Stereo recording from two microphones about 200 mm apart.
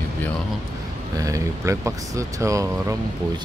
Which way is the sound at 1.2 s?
15° right (ahead or behind).